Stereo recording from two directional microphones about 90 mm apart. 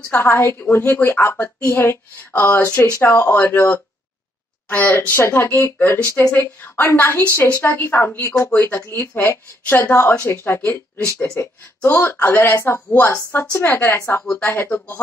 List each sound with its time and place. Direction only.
0.1 s a woman's voice: 25° left (ahead or behind)
6.3 s a woman's voice: 20° left (ahead or behind)